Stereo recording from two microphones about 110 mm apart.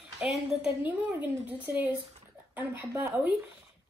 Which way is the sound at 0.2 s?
5° right (ahead or behind).